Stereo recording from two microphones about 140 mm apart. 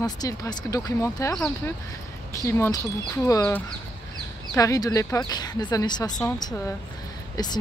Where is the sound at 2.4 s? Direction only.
20° left (ahead or behind).